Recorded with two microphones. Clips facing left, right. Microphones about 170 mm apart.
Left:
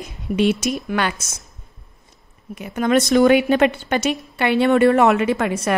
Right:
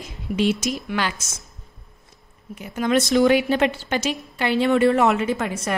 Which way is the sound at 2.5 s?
60° left (ahead or behind).